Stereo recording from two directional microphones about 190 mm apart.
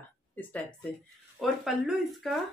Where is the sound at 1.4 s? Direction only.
Centre (ahead or behind).